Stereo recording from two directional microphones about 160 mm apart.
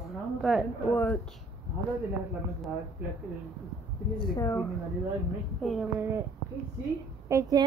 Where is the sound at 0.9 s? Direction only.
10° left (ahead or behind).